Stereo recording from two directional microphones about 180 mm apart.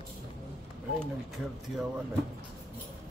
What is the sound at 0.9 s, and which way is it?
Speech, centre (ahead or behind).